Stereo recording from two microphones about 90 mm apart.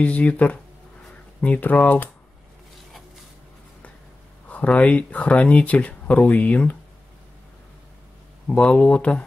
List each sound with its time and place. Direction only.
0.0 s speech: 15° left (ahead or behind)
4.5 s speech: 15° left (ahead or behind)
8.5 s speech: 10° left (ahead or behind)